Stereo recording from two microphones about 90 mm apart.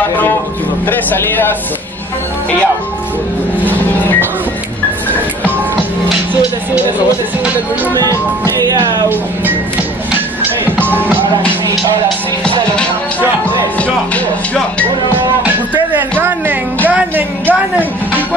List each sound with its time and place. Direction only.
0.8 s speech: 20° left (ahead or behind)
8.5 s speech: 50° right (ahead or behind)
9.1 s music: 20° right (ahead or behind)
10.9 s speech: 20° right (ahead or behind)
13.7 s music: 15° left (ahead or behind)
15.0 s music: 20° right (ahead or behind)